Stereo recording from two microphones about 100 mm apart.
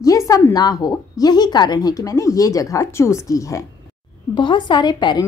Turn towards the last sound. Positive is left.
turn(degrees=50)  # may be behind; listen again after turning